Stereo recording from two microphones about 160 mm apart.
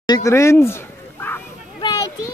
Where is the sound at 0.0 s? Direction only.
20° left (ahead or behind).